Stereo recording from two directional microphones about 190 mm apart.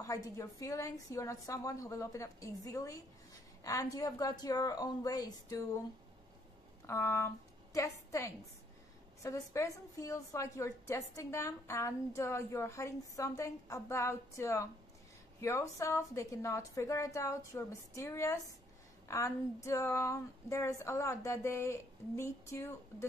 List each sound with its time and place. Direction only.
0.0 s a woman's voice: 15° left (ahead or behind)
6.9 s a woman's voice: 15° left (ahead or behind)